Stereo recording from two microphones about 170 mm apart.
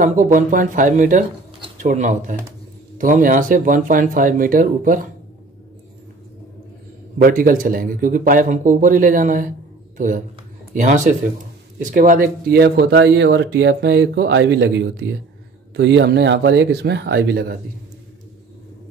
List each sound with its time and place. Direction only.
0.0 s speech: 50° right (ahead or behind)
7.2 s speech: 55° right (ahead or behind); by 17.6 s 70° right (ahead or behind)